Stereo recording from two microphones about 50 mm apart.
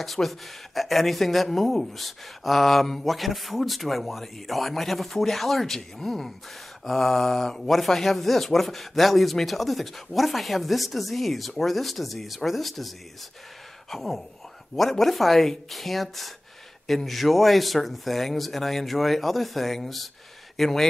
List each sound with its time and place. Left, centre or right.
0.0 s speech: centre